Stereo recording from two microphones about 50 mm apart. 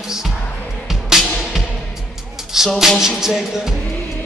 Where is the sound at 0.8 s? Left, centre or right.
Centre.